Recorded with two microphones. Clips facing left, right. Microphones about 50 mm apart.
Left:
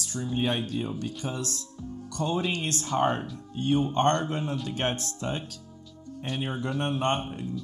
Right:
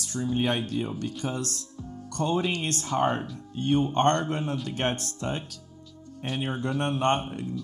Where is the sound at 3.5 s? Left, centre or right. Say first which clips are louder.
Right 1 dB; right.